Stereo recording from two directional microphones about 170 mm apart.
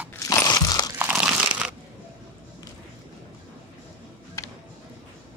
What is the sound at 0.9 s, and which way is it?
Crumpling, 5° right (ahead or behind).